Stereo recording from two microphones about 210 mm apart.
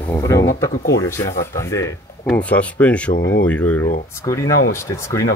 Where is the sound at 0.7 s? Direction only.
40° left (ahead or behind).